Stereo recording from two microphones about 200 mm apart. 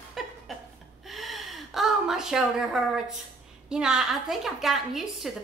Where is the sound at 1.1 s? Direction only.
Centre (ahead or behind).